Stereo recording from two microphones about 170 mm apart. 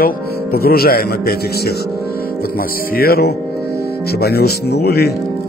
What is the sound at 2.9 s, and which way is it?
Speech, 60° left (ahead or behind).